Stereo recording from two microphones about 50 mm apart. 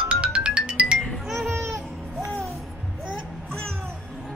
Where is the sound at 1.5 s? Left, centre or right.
Right.